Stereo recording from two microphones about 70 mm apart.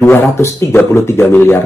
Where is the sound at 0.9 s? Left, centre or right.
Left.